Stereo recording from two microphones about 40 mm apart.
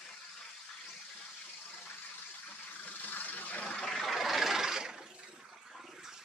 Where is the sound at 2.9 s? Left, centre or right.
Left.